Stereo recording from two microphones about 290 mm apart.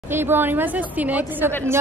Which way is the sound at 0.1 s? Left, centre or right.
Centre.